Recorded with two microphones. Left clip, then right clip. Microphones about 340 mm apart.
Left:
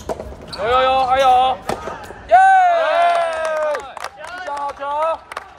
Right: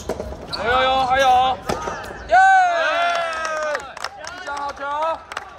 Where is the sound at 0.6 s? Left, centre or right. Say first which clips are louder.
Left 3 dB; left.